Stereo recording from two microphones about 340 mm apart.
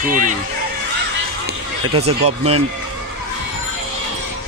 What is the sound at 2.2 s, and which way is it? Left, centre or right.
Speech, centre.